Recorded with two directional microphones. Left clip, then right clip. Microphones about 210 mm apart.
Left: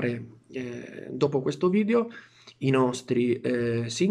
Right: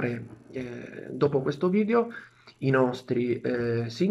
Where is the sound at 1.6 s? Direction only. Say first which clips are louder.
Left 1 dB; 15° left (ahead or behind).